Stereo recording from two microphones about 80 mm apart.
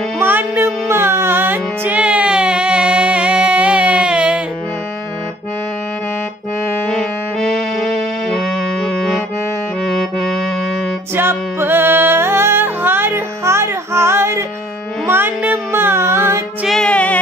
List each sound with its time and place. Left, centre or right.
0.2 s music: right
6.9 s music: centre
8.8 s accordion: centre
9.8 s music: centre
11.1 s music: right
16.6 s music: centre
16.9 s music: centre